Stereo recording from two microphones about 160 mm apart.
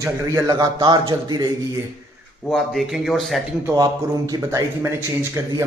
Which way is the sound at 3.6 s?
20° right (ahead or behind).